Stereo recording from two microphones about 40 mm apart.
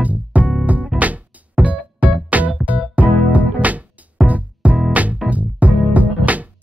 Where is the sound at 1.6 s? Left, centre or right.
Right.